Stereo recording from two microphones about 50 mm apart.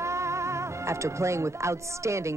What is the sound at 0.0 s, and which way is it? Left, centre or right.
Speech, right.